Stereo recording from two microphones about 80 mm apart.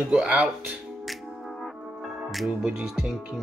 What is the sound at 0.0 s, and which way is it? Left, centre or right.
Speech, centre.